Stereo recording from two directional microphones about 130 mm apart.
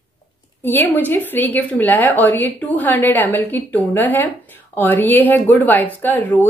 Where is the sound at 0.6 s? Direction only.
15° left (ahead or behind).